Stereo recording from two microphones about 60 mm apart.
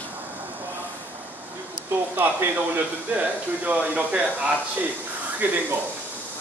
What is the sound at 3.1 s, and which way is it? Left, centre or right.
Speech, right.